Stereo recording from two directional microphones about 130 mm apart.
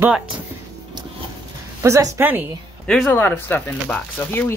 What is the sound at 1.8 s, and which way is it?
Speech, 25° right (ahead or behind).